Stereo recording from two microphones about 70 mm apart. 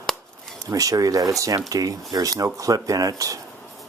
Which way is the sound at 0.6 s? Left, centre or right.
Right.